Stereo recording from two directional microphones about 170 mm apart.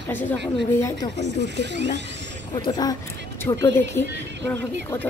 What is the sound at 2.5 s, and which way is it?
A woman's voice, 25° left (ahead or behind).